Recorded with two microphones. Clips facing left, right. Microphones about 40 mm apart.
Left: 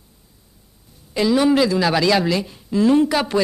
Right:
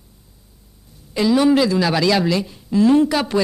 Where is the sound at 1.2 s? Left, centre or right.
Centre.